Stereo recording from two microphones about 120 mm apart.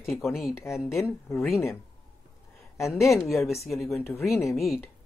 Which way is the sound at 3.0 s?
25° left (ahead or behind).